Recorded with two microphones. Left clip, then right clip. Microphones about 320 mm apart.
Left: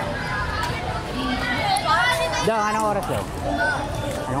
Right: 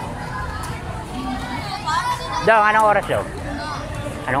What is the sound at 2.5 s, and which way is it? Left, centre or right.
Speech, right.